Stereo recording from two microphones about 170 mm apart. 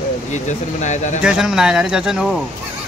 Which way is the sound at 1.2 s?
5° right (ahead or behind).